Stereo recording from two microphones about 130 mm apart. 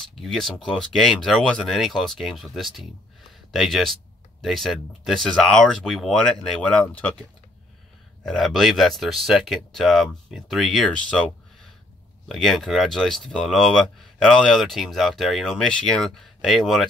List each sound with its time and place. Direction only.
0.1 s speech: centre (ahead or behind)
8.3 s speech: centre (ahead or behind)